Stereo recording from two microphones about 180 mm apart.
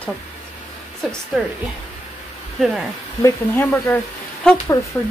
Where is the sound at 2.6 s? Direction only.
Centre (ahead or behind).